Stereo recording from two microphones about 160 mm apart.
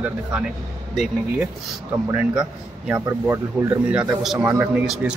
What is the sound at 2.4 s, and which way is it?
A man's voice, 10° right (ahead or behind).